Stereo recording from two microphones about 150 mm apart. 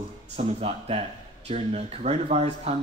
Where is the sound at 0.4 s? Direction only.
45° right (ahead or behind).